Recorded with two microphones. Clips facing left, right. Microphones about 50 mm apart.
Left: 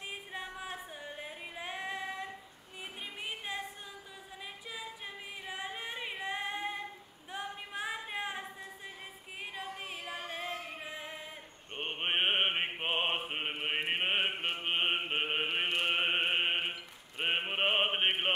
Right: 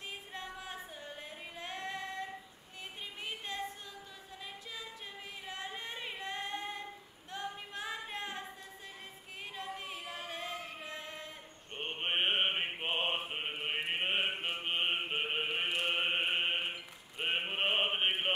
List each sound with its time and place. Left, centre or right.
0.1 s music: centre
3.2 s a sound: centre
4.7 s singing: centre
7.2 s music: centre
9.8 s music: centre
11.7 s mantra: centre
15.8 s chant: centre
17.2 s mantra: centre